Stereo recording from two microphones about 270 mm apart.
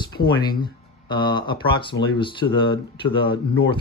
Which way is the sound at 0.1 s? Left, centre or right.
Centre.